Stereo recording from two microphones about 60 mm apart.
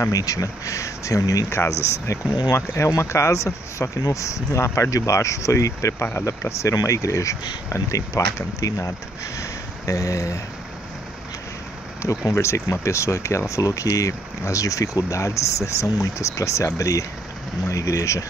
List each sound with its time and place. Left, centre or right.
0.1 s speech: left
1.5 s speech: left
12.0 s speech: left